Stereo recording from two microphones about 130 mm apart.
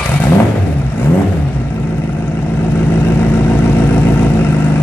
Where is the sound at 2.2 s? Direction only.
15° left (ahead or behind).